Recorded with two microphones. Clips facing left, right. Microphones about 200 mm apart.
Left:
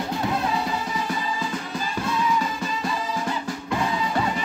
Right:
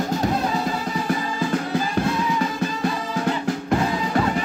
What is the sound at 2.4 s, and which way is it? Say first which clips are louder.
Music: right 5 dB; 55° right (ahead or behind).